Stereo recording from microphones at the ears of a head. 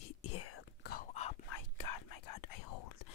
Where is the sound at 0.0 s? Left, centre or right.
Left.